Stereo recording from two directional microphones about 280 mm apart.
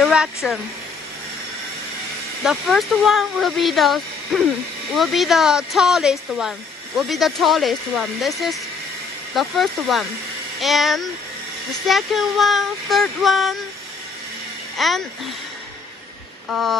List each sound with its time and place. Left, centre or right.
0.0 s speech: centre
2.4 s speech: centre
14.8 s speech: centre
16.4 s a sound: centre